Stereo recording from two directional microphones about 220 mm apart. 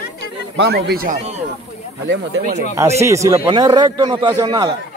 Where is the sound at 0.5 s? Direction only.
50° right (ahead or behind).